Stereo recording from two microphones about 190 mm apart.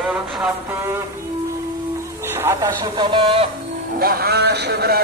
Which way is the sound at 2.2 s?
10° right (ahead or behind).